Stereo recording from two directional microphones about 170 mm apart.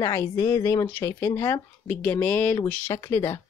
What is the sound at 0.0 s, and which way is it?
Speech, 15° left (ahead or behind).